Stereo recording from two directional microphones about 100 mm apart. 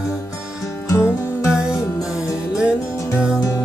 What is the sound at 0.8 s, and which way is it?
Music, 30° left (ahead or behind).